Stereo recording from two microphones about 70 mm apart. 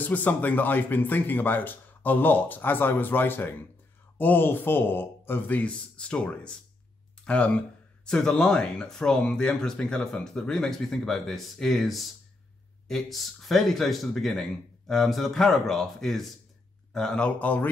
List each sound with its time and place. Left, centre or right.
0.0 s speech: left
17.4 s speech: left